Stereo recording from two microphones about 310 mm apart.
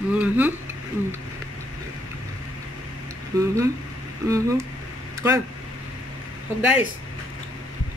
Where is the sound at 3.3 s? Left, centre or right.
Centre.